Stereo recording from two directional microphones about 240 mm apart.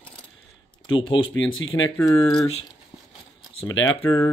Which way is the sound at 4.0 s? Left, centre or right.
Centre.